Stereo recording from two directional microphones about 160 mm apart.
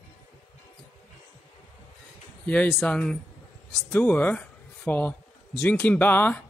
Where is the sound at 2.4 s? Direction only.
10° left (ahead or behind).